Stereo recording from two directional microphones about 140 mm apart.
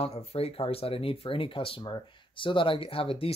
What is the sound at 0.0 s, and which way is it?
Speech, 45° left (ahead or behind).